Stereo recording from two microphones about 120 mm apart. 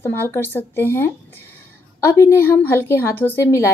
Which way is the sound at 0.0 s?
20° left (ahead or behind).